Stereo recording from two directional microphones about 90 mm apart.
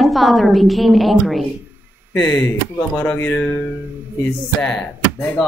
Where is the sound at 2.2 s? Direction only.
35° left (ahead or behind).